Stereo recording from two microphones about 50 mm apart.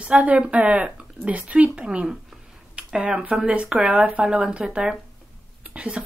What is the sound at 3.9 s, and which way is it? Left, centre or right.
Speech, right.